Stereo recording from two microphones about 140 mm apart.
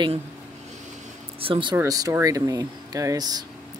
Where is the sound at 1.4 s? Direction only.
40° right (ahead or behind).